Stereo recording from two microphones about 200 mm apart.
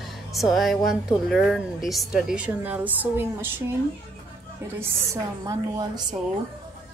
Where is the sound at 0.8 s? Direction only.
Centre (ahead or behind).